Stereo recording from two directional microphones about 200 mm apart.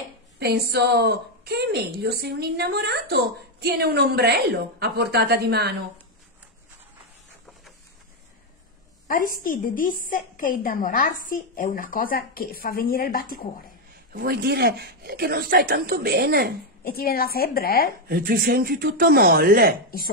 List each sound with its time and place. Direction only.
0.7 s a woman's voice: 55° right (ahead or behind)
9.0 s a woman's voice: 45° left (ahead or behind)
14.1 s a woman's voice: 50° right (ahead or behind)
16.8 s a woman's voice: 50° left (ahead or behind)
18.0 s a woman's voice: 45° right (ahead or behind)